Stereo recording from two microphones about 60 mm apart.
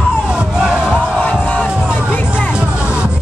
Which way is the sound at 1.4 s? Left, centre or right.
Left.